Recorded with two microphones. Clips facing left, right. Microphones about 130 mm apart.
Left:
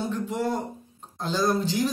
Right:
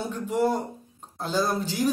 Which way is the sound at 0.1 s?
10° right (ahead or behind).